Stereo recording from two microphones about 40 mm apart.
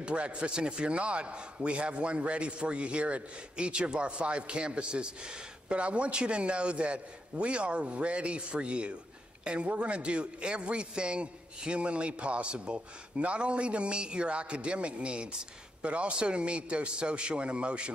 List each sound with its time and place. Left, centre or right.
0.0 s a man's voice: right